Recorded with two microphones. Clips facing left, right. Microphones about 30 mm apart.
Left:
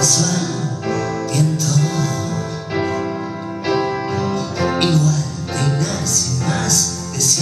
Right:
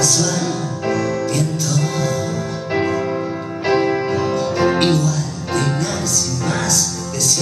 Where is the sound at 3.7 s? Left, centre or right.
Centre.